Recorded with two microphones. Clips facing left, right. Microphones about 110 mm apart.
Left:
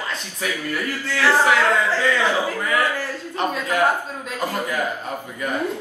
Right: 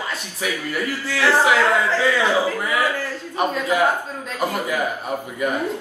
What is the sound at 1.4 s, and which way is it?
A man's voice, 15° right (ahead or behind).